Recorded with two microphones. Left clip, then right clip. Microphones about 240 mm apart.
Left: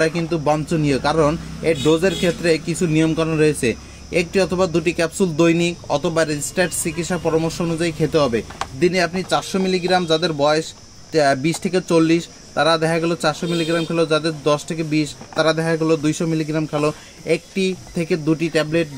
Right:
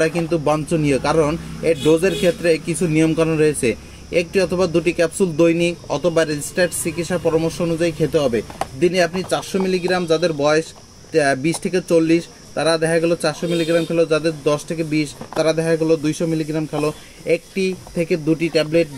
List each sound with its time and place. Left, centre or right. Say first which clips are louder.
0.0 s a man's voice: right 1 dB; centre